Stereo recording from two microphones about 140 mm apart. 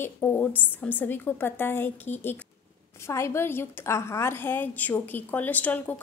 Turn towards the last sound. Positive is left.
turn(degrees=10)  # may be behind; listen again after turning